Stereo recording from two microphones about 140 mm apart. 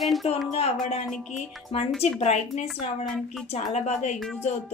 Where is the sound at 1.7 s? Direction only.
45° left (ahead or behind).